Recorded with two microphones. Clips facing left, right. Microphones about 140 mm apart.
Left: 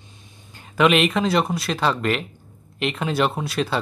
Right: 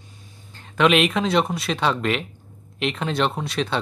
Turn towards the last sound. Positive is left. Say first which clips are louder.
# left 1 dB
turn(degrees=5)  # may be behind; listen again after turning